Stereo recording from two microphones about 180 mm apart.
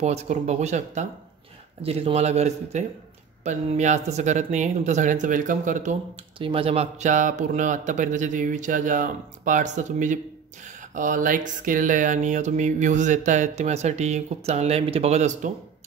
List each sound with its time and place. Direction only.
0.0 s speech: 35° right (ahead or behind)
6.3 s speech: 30° right (ahead or behind)